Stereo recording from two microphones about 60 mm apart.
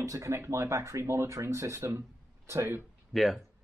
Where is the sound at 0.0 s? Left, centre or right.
Right.